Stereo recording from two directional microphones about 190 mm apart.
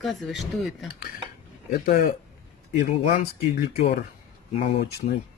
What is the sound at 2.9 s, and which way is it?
Speech, 50° left (ahead or behind).